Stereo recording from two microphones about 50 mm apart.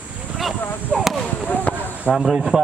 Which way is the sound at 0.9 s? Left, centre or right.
Centre.